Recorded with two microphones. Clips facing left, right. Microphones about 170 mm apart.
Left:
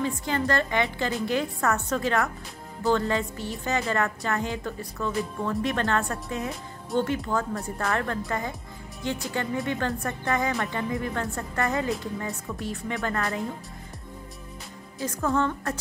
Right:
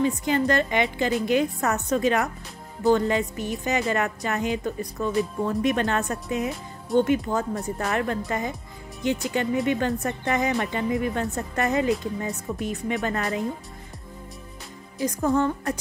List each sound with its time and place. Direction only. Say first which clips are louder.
0.0 s speech: right 5 dB; 15° right (ahead or behind)
15.0 s a woman's voice: right 3 dB; 20° right (ahead or behind)